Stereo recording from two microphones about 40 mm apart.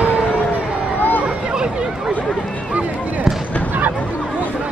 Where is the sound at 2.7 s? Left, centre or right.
Right.